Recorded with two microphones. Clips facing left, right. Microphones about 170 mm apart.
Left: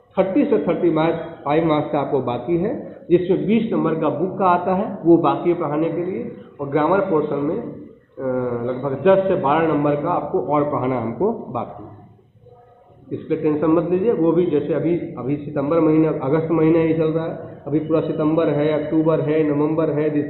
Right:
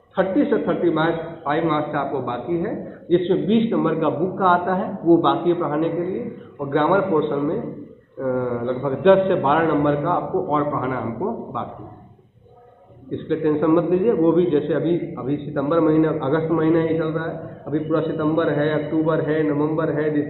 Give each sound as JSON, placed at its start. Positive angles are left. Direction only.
{"t": 0.2, "sound": "a man's voice", "side_deg": 15}
{"t": 0.5, "sound": "a man's voice", "side_deg": 5}
{"t": 1.4, "sound": "a man's voice", "side_deg": 15}
{"t": 3.3, "sound": "a man's voice", "side_deg": 0}
{"t": 10.5, "sound": "a man's voice", "side_deg": 20}
{"t": 13.1, "sound": "a man's voice", "side_deg": 5}
{"t": 16.8, "sound": "a man's voice", "side_deg": 15}